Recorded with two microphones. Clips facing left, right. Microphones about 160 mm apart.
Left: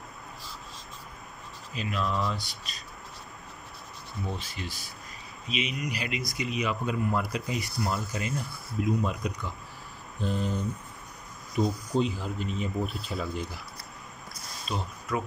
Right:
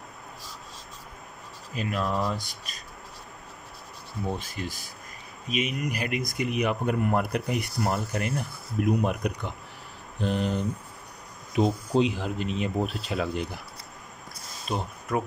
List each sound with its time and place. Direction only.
1.7 s speech: 50° right (ahead or behind)
4.4 s speech: 50° right (ahead or behind)
10.2 s speech: 75° right (ahead or behind)
11.5 s speech: 90° right; by 13.6 s 70° right (ahead or behind)
14.7 s speech: 55° right (ahead or behind)